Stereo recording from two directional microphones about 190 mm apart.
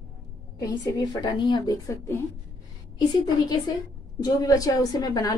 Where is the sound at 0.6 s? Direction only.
20° left (ahead or behind).